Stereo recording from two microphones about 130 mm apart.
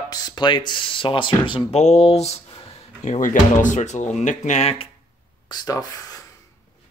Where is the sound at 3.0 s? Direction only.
75° left (ahead or behind); by 4.9 s 55° left (ahead or behind).